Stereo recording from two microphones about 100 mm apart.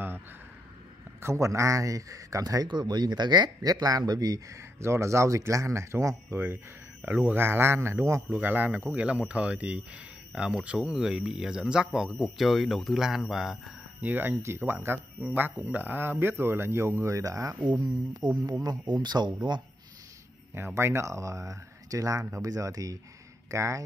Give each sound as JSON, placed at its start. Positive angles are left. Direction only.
{"t": 1.2, "sound": "speech", "side_deg": -30}
{"t": 8.3, "sound": "speech", "side_deg": -15}
{"t": 14.0, "sound": "speech", "side_deg": -20}
{"t": 20.5, "sound": "speech", "side_deg": -25}